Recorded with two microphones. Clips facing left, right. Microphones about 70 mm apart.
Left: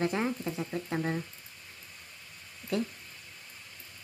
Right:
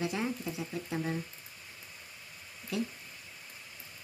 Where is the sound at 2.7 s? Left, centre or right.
Left.